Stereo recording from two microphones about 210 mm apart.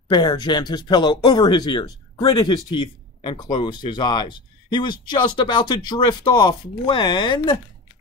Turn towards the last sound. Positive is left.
turn(degrees=20)  # may be behind; listen again after turning